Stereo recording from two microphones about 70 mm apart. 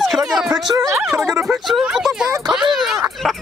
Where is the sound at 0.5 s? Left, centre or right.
Right.